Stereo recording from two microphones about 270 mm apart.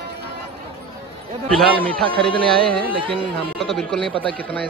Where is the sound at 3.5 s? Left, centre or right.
Centre.